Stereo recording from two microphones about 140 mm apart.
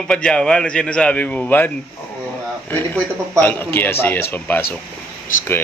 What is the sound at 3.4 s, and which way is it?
A man's voice, 15° left (ahead or behind).